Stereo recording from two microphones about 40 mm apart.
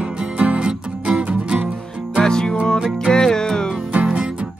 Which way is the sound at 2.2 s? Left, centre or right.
Centre.